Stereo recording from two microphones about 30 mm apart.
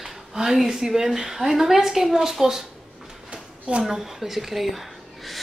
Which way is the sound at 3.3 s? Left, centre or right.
Right.